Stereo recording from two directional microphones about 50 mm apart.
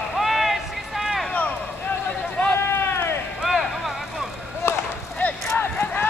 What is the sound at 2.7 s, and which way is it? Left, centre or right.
Run, left.